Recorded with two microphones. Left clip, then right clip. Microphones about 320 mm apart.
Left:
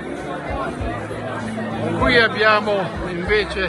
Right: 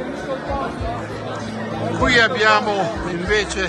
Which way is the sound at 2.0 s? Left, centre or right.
Centre.